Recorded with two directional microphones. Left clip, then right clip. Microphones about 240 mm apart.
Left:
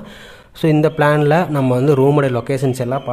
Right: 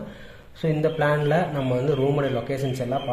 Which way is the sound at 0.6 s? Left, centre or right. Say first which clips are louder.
Left 9 dB; left.